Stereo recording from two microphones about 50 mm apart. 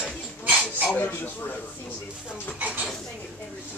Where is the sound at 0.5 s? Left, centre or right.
Centre.